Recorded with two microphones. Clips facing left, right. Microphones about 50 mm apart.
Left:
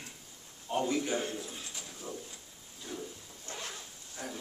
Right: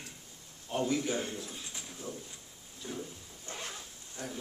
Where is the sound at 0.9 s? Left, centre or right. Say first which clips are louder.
Even; centre.